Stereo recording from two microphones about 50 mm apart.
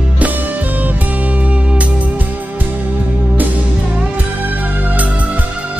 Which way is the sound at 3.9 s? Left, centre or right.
Right.